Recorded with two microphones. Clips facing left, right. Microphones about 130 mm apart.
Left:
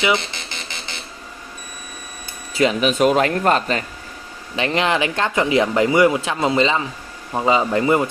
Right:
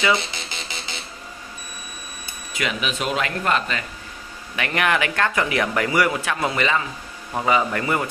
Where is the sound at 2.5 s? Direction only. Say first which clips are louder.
Left 9 dB; 35° left (ahead or behind).